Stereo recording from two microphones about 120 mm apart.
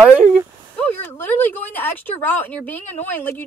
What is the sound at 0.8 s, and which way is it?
Speech, 15° left (ahead or behind).